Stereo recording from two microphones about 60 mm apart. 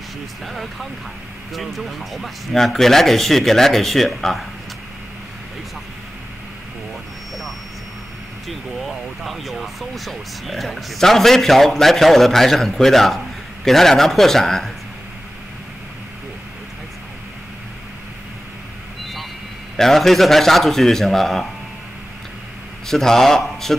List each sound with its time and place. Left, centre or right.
0.5 s speech: centre
8.5 s speech: centre
19.8 s speech: centre
22.8 s speech: centre